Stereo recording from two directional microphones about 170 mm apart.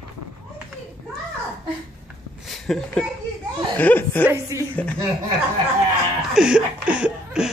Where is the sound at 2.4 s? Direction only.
Centre (ahead or behind).